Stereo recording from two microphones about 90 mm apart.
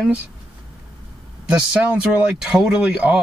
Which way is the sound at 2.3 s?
5° right (ahead or behind).